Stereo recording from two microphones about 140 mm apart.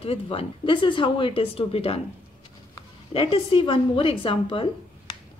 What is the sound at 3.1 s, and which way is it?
A woman's voice, 40° left (ahead or behind).